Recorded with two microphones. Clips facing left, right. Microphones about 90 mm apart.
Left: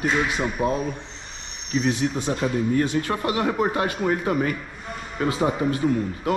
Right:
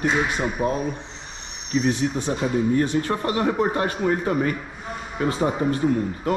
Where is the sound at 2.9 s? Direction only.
35° right (ahead or behind).